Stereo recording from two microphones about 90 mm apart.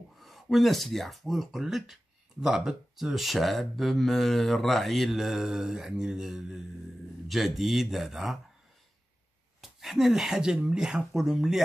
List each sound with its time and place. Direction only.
0.2 s speech: centre (ahead or behind)
9.6 s speech: centre (ahead or behind)